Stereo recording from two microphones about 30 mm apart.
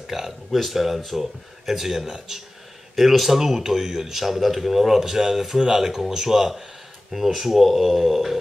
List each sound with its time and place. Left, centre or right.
0.0 s speech: centre
0.5 s speech: centre
2.0 s speech: right
3.0 s speech: centre
3.3 s speech: centre